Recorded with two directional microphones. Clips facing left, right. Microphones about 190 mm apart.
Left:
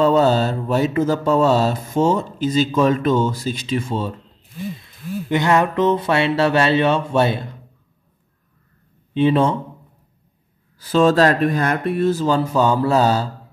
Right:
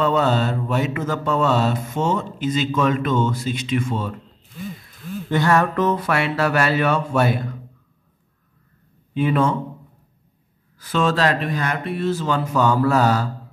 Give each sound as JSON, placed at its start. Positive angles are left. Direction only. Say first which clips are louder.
{"t": 0.0, "sound": "mantra", "louder": "left 4 dB", "side_deg": 35}
{"t": 5.3, "sound": "speech", "louder": "left 1 dB", "side_deg": 20}
{"t": 9.1, "sound": "speech", "louder": "left 3 dB", "side_deg": 25}
{"t": 10.8, "sound": "mantra", "louder": "left 6 dB", "side_deg": 35}